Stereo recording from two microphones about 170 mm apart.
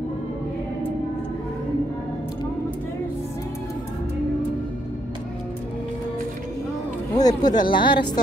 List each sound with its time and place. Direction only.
7.2 s a woman's voice: 25° left (ahead or behind)